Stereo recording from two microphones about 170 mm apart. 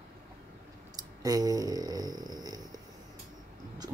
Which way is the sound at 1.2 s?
20° right (ahead or behind).